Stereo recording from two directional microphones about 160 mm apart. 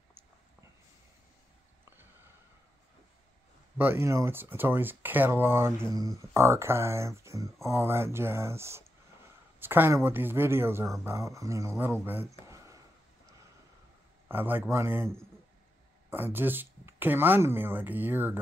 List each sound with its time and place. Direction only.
3.7 s speech: 15° right (ahead or behind)
14.2 s a man's voice: 10° right (ahead or behind)
16.1 s speech: 15° right (ahead or behind)